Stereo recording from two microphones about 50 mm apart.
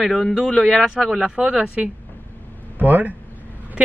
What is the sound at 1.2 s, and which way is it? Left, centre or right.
A man's voice, right.